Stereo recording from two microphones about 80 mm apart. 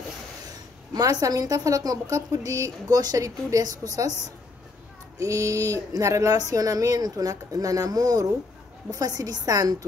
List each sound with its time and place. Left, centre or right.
0.9 s a woman's voice: right
5.2 s a woman's voice: right